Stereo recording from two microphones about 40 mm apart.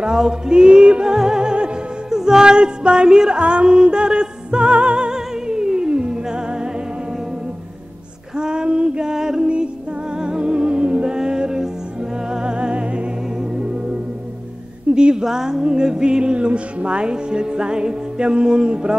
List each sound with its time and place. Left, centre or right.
0.0 s music: centre
8.4 s female singing: right
10.1 s music: right
15.0 s a sound: right
15.2 s music: centre